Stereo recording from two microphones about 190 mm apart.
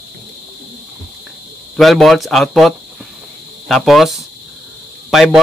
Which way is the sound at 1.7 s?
Centre (ahead or behind).